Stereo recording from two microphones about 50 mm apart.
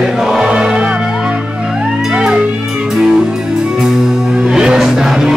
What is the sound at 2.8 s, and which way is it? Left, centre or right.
Music, centre.